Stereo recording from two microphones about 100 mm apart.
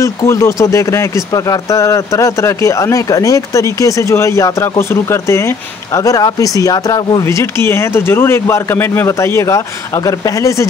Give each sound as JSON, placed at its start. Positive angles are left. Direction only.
{"t": 0.0, "sound": "speech", "side_deg": 30}
{"t": 7.2, "sound": "speech", "side_deg": 30}